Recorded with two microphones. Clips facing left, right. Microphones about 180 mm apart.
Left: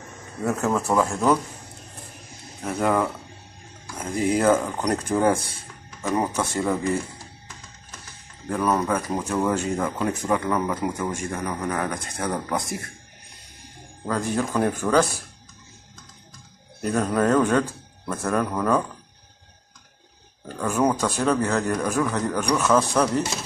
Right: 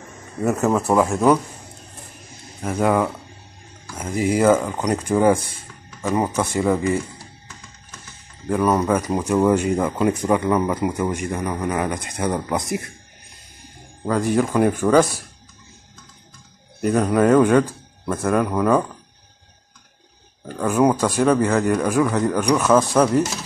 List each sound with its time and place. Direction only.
0.5 s speech: 20° right (ahead or behind)
2.6 s speech: 10° right (ahead or behind)
8.5 s speech: 15° right (ahead or behind)
14.2 s speech: 10° right (ahead or behind)
16.8 s speech: 5° right (ahead or behind)
20.6 s speech: 15° right (ahead or behind)